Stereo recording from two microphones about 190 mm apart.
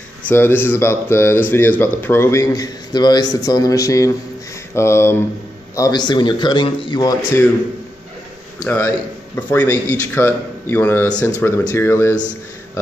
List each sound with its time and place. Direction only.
0.3 s a man's voice: 10° left (ahead or behind)
8.6 s speech: 10° left (ahead or behind)